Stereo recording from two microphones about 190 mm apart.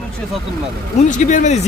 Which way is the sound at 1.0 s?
40° left (ahead or behind).